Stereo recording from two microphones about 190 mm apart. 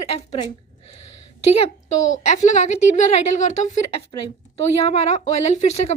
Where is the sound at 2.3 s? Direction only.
40° left (ahead or behind).